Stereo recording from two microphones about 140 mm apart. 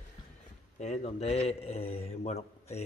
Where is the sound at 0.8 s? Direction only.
50° left (ahead or behind).